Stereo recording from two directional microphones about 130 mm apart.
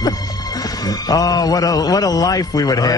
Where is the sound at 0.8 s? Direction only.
30° left (ahead or behind).